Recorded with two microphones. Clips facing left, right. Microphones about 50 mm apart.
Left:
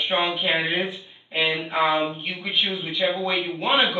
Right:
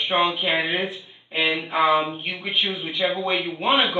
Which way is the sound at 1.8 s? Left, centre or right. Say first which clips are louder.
Right 2 dB; right.